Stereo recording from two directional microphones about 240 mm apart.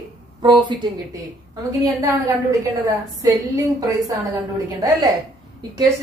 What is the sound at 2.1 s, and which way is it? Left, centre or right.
A woman's voice, centre.